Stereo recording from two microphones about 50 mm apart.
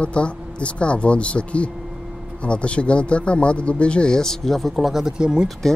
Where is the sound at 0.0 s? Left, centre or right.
Left; by 5.0 s centre.